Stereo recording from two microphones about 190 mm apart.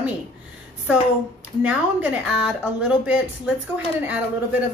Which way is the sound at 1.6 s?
5° right (ahead or behind).